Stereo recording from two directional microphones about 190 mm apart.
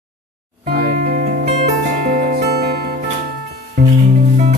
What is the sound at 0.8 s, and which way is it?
Music, 45° right (ahead or behind).